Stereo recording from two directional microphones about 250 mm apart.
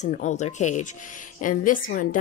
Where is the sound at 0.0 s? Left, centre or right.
Left.